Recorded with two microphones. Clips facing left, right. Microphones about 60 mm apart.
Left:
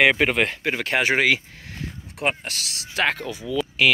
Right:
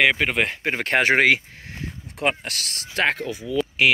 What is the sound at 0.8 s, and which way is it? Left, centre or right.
Speech, right.